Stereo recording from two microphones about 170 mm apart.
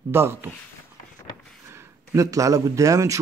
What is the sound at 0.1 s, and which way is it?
Speech, 15° right (ahead or behind).